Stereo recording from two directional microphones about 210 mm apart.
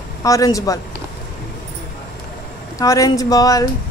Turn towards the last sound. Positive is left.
turn(degrees=15)  # may be behind; listen again after turning